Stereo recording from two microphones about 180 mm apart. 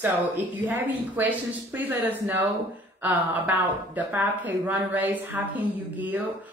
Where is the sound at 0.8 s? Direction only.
10° right (ahead or behind).